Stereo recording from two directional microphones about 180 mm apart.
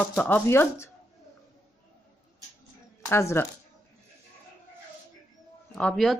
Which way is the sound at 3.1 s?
15° left (ahead or behind).